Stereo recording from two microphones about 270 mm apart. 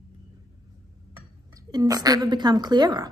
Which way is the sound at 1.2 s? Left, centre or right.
Centre.